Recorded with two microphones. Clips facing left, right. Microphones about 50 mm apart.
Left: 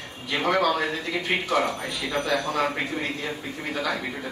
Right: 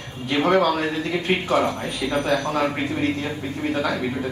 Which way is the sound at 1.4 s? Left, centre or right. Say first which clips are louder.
Right 3 dB; right.